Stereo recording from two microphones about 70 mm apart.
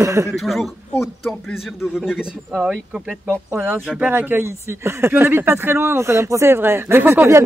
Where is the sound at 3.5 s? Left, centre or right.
Centre.